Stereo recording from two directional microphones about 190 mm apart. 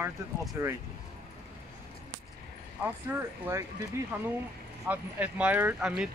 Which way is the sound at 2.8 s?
10° right (ahead or behind).